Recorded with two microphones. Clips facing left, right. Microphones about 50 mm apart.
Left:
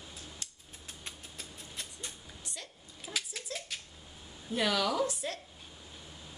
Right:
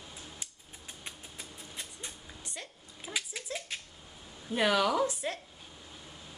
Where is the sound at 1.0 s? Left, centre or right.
Right.